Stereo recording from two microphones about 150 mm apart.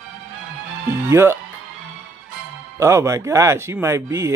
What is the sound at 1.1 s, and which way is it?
Speech, 15° right (ahead or behind).